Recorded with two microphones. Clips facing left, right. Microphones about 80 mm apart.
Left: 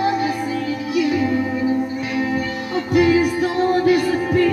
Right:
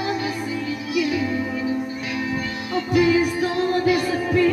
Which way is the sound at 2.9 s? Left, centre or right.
Left.